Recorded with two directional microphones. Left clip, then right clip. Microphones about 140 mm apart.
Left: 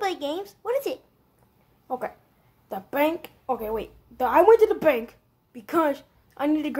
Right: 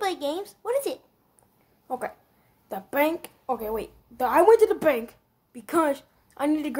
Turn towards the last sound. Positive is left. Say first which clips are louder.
# left 1 dB
turn(degrees=-45)  # may be behind; listen again after turning